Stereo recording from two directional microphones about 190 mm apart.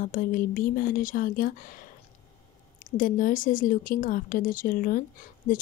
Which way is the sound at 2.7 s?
45° left (ahead or behind).